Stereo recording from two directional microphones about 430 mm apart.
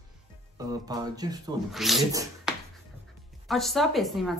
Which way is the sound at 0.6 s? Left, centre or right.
Centre.